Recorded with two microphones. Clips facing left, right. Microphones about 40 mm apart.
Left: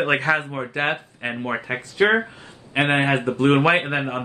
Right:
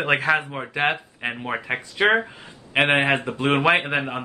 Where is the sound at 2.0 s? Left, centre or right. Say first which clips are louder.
Left 1 dB; right.